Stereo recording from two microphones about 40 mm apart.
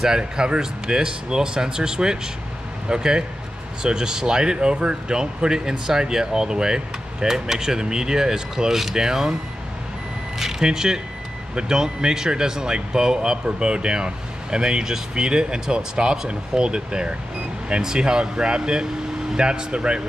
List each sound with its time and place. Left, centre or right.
0.2 s speech: right
10.4 s speech: centre